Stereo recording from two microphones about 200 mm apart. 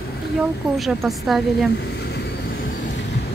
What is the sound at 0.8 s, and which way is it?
Speech, centre (ahead or behind).